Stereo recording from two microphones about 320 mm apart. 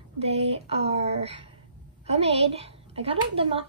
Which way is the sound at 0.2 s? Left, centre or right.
Centre.